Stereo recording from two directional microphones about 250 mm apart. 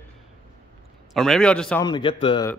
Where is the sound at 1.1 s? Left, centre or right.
Centre.